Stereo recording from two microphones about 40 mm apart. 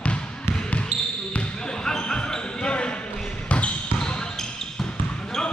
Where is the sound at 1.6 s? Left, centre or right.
Centre.